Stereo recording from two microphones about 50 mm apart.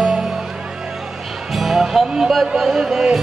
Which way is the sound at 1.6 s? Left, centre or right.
Centre.